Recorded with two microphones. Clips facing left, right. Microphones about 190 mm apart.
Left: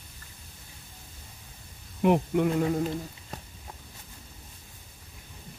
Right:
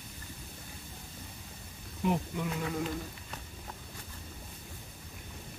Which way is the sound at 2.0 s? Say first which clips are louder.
Left 9 dB; 60° left (ahead or behind).